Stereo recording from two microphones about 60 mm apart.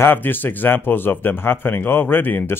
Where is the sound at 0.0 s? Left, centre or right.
Left.